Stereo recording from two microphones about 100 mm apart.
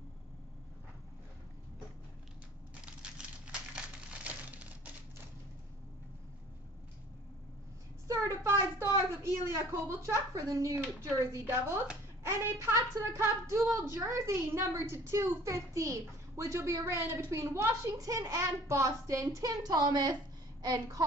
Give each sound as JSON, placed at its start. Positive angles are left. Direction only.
{"t": 2.8, "sound": "typewriter", "side_deg": -10}
{"t": 3.7, "sound": "crumpling", "side_deg": -10}
{"t": 8.1, "sound": "a sound", "side_deg": -30}
{"t": 9.1, "sound": "a woman's voice", "side_deg": -30}